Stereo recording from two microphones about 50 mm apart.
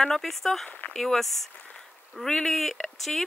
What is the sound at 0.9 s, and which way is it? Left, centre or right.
Speech, centre.